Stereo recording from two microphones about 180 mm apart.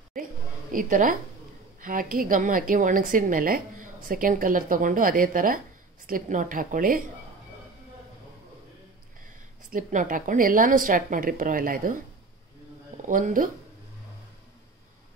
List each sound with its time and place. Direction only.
0.1 s a woman's voice: 50° right (ahead or behind)
9.7 s a woman's voice: 45° right (ahead or behind)
13.0 s speech: 45° right (ahead or behind)